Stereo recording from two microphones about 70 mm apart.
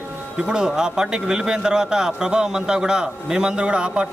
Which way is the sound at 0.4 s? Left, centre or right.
Centre.